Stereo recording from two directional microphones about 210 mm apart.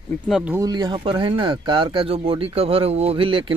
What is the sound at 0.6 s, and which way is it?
Speech, 20° right (ahead or behind).